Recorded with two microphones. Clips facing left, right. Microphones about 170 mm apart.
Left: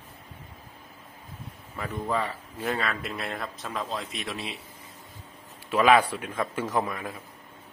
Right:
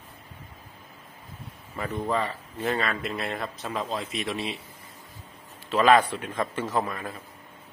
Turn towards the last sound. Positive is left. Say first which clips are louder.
# even
turn(degrees=10)  # may be behind; listen again after turning